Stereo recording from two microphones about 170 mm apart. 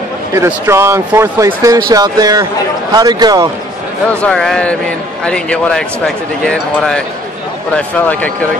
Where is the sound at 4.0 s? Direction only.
5° left (ahead or behind).